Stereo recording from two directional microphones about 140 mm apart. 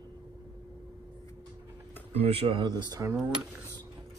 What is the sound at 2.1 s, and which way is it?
Speech, 40° right (ahead or behind).